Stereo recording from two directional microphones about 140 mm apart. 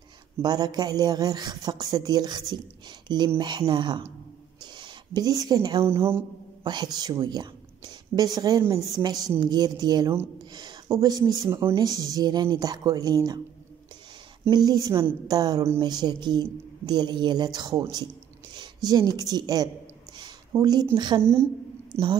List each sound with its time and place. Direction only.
0.4 s speech: 30° right (ahead or behind)
5.9 s speech: 15° right (ahead or behind)
6.6 s a woman's voice: 30° right (ahead or behind)
14.5 s speech: 30° right (ahead or behind)
21.2 s speech: 15° right (ahead or behind)